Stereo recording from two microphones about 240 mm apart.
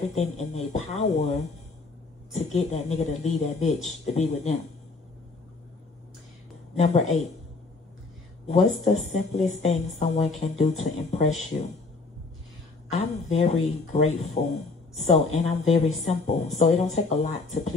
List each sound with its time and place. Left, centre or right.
0.1 s speech: left
6.8 s speech: left
8.5 s speech: left
12.9 s speech: left